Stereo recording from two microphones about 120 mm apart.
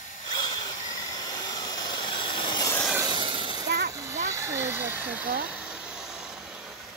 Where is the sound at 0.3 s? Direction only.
35° left (ahead or behind).